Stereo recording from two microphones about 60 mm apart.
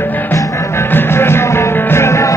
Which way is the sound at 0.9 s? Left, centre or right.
Left.